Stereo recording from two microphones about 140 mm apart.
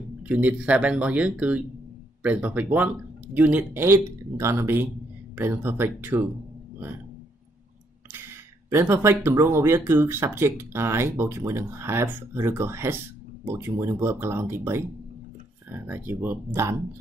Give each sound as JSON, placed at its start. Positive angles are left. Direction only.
{"t": 0.3, "sound": "speech", "side_deg": -10}
{"t": 8.6, "sound": "speech", "side_deg": -15}